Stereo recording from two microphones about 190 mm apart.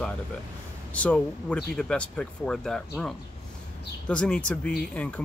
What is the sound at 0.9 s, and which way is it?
Speech, 5° left (ahead or behind).